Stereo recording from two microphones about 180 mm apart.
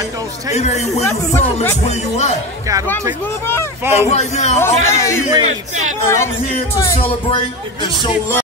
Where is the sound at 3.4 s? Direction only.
15° left (ahead or behind).